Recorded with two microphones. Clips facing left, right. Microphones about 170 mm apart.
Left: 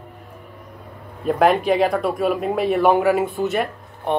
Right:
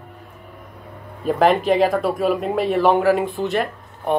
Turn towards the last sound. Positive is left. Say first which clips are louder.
# right 1 dB
turn(degrees=0)  # may be behind; listen again after turning